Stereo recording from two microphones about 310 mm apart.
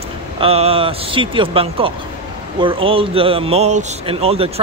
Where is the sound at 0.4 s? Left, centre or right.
Centre.